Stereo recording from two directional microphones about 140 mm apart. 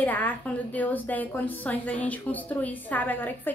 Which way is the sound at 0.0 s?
10° left (ahead or behind).